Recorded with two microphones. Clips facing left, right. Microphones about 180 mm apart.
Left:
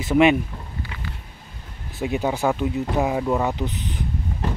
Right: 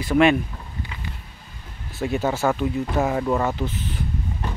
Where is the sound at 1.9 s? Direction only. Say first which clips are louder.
Even; 15° left (ahead or behind).